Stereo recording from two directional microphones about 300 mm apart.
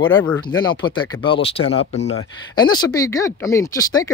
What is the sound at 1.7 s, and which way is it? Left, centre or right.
Speech, left.